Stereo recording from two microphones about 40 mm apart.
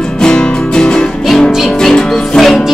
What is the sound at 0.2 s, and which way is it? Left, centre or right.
Music, centre.